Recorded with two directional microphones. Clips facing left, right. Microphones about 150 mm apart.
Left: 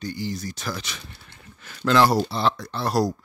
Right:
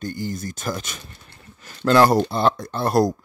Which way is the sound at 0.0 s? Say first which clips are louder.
Right 2 dB; 50° right (ahead or behind).